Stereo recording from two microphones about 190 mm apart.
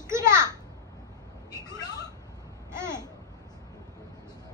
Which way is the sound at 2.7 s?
15° right (ahead or behind).